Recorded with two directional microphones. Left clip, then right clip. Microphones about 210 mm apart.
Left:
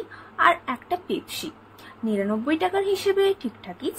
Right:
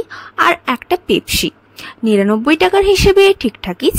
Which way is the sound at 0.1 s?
45° right (ahead or behind).